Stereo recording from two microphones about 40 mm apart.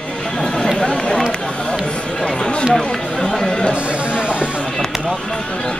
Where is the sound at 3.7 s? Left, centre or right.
Right.